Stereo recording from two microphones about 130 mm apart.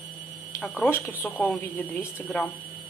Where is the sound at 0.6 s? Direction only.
15° left (ahead or behind).